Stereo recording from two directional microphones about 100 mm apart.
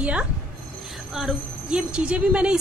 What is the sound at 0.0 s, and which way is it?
A woman's voice, 10° right (ahead or behind).